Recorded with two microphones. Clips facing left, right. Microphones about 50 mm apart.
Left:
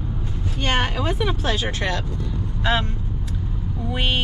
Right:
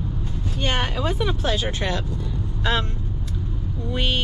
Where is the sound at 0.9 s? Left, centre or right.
Left.